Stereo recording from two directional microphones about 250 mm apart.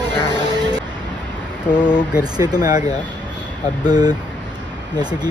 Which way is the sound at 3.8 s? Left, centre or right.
Centre.